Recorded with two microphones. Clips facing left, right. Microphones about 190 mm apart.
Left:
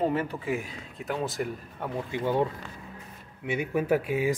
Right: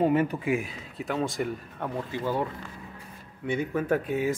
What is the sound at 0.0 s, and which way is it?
Speech, 15° right (ahead or behind).